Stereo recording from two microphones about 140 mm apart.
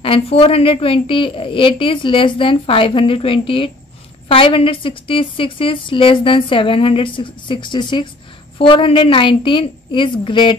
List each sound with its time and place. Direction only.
0.0 s a woman's voice: 40° left (ahead or behind)